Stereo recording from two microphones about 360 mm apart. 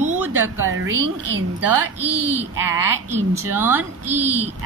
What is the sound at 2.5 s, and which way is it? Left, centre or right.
A woman's voice, centre.